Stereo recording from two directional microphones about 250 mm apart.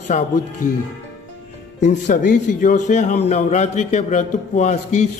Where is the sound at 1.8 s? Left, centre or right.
Left.